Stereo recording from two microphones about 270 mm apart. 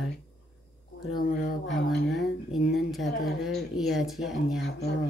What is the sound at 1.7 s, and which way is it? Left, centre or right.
Speech, centre.